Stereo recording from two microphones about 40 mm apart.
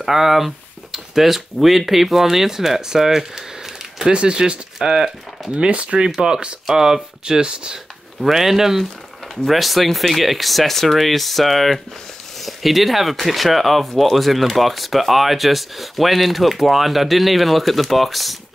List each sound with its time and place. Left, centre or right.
0.0 s speech: centre
4.1 s speech: right
5.5 s speech: right
8.2 s speech: centre